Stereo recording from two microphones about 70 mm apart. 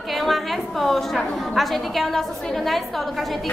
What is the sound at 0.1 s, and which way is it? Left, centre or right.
A woman's voice, centre.